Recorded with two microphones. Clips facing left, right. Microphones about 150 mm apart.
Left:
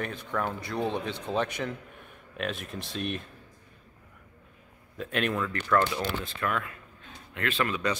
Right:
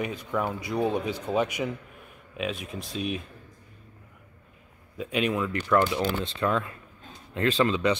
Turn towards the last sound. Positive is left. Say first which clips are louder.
# right 5 dB
turn(degrees=-20)  # may be behind; listen again after turning